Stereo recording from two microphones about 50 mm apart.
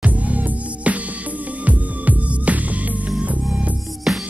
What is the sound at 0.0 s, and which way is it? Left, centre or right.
Music, right.